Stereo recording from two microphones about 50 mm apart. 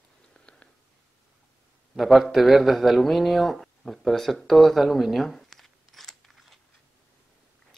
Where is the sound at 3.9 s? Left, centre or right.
Centre.